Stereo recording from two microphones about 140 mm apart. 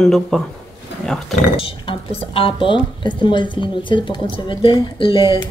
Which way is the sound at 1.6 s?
40° left (ahead or behind).